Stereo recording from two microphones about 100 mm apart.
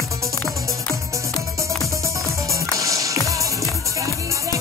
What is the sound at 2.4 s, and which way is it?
Music, 35° right (ahead or behind).